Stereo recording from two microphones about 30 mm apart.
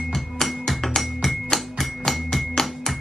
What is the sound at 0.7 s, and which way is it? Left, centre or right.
Music, centre.